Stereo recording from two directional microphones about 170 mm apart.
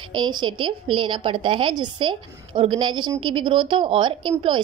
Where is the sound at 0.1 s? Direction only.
25° right (ahead or behind).